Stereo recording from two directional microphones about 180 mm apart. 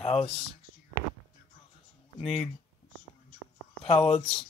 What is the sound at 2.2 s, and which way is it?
Speech, centre (ahead or behind).